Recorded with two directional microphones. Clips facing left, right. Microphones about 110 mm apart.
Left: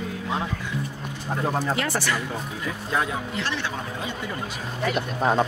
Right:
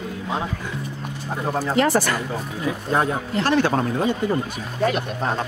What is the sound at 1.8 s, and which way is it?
Speech, 40° right (ahead or behind).